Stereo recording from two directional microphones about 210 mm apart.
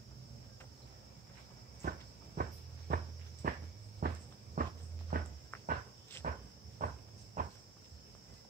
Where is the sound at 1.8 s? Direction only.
45° right (ahead or behind).